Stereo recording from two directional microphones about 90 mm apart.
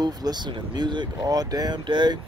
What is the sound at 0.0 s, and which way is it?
Speech, 50° right (ahead or behind).